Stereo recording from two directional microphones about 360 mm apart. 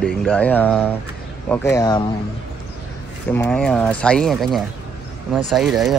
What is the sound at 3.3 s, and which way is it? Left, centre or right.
Speech, centre.